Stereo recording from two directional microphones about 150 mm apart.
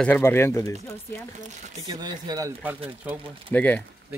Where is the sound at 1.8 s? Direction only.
25° right (ahead or behind).